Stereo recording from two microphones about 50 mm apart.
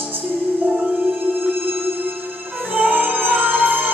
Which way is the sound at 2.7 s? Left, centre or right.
Right.